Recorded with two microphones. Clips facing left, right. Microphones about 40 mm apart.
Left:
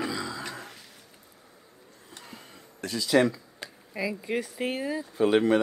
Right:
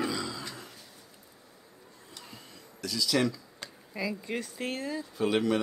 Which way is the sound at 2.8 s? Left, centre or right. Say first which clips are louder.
Left 5 dB; left.